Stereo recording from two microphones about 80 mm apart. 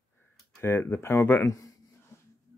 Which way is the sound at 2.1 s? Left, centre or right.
Left.